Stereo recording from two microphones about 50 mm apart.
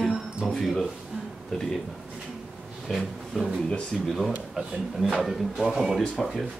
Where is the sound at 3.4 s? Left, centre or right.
Centre.